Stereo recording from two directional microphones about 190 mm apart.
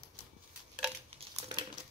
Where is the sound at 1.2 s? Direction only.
30° right (ahead or behind).